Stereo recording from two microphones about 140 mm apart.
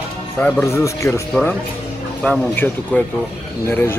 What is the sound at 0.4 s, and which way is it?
Speech, 10° left (ahead or behind).